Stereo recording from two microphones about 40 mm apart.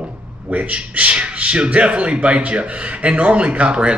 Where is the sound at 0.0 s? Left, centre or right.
Right.